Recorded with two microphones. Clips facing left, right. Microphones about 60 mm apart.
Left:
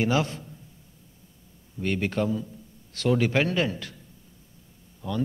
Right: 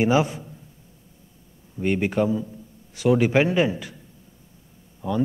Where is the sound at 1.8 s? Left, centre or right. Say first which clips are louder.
Right 5 dB; centre.